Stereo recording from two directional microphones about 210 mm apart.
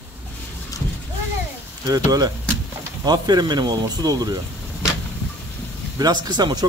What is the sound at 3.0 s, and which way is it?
Speech, 20° right (ahead or behind).